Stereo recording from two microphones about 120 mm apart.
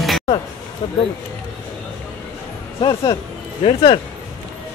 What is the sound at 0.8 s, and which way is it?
Speech, 45° left (ahead or behind).